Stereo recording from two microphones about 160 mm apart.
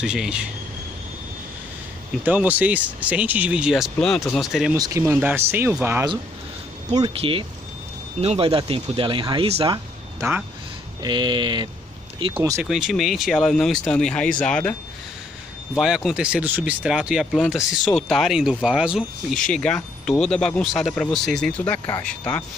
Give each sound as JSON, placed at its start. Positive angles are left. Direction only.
{"t": 0.0, "sound": "speech", "side_deg": -5}
{"t": 2.2, "sound": "speech", "side_deg": -10}
{"t": 4.7, "sound": "speech", "side_deg": -20}
{"t": 7.2, "sound": "speech", "side_deg": -35}
{"t": 11.0, "sound": "speech", "side_deg": -30}
{"t": 12.6, "sound": "speech", "side_deg": 0}